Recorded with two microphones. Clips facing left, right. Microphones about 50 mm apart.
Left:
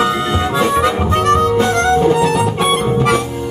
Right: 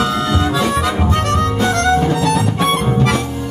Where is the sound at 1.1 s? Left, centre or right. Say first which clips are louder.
Left 4 dB; left.